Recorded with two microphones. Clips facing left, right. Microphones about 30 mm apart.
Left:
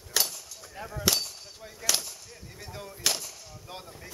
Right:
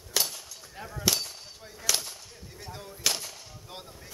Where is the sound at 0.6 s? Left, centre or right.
Centre.